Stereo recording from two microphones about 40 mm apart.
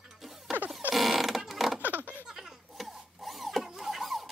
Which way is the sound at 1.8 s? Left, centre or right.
Right.